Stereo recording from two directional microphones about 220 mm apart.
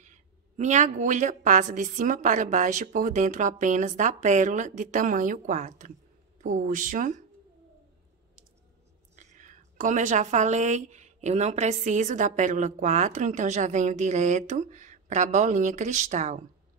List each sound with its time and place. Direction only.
0.0 s a woman's voice: 35° right (ahead or behind)
9.1 s a woman's voice: 35° right (ahead or behind)